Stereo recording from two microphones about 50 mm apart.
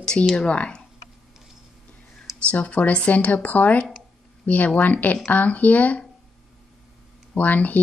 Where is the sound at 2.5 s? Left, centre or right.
Left.